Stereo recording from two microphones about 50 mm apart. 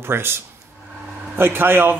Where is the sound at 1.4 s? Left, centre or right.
Right.